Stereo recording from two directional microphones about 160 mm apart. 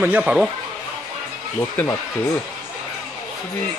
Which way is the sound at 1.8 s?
10° left (ahead or behind).